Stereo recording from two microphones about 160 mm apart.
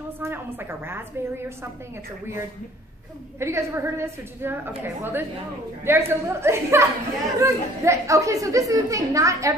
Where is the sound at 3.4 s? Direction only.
15° right (ahead or behind).